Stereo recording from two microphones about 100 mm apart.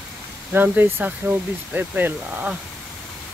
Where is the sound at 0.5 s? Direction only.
20° right (ahead or behind).